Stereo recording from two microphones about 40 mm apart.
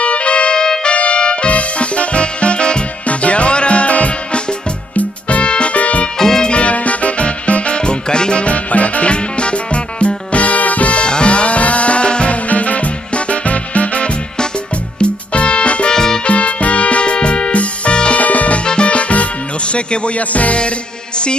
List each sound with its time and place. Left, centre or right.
0.0 s trumpet: left
0.9 s music: left
6.1 s music: centre
6.5 s music: left
12.4 s music: left
15.9 s music: centre
16.3 s music: left